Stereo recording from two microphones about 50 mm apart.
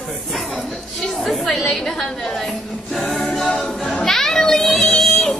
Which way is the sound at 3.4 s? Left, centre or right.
Centre.